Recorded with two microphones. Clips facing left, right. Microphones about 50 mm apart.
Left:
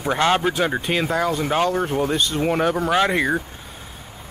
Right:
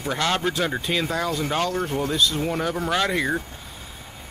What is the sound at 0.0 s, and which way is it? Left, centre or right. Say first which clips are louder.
Speech: left 5 dB; left.